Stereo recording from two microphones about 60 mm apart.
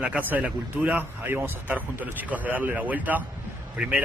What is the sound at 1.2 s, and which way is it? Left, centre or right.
A man's voice, right.